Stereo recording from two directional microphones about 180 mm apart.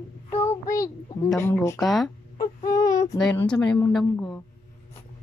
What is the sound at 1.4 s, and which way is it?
Speech, 15° left (ahead or behind).